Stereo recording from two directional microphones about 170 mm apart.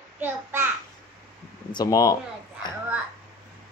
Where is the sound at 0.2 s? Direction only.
10° right (ahead or behind).